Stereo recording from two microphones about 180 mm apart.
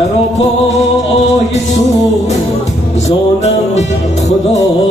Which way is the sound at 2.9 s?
35° left (ahead or behind).